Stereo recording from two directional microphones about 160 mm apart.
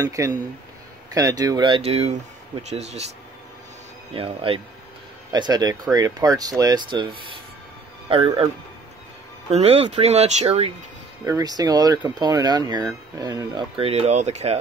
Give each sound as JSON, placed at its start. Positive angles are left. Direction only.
{"t": 0.0, "sound": "speech", "side_deg": -20}
{"t": 1.8, "sound": "speech", "side_deg": -40}
{"t": 4.1, "sound": "speech", "side_deg": -35}
{"t": 9.5, "sound": "speech", "side_deg": -40}
{"t": 11.2, "sound": "speech", "side_deg": -25}
{"t": 13.7, "sound": "speech", "side_deg": -40}